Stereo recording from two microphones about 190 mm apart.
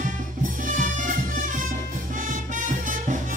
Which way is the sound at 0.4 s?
45° right (ahead or behind).